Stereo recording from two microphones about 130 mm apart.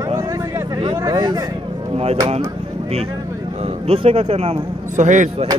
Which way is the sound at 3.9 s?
50° right (ahead or behind).